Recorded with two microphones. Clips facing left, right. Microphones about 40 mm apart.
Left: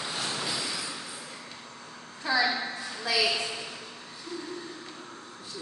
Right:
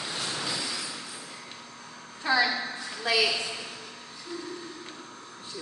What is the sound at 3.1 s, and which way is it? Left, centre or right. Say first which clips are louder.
Speech: right 3 dB; right.